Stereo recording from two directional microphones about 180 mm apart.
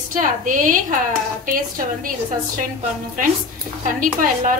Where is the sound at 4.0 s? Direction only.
50° right (ahead or behind).